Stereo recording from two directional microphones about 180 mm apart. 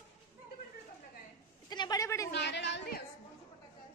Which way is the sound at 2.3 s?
75° left (ahead or behind).